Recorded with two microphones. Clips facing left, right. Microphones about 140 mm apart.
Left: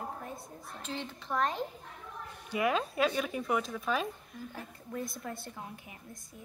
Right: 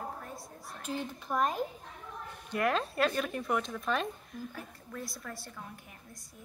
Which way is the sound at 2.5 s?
5° left (ahead or behind).